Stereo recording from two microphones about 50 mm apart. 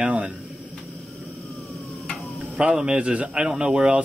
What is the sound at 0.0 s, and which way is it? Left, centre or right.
Speech, right.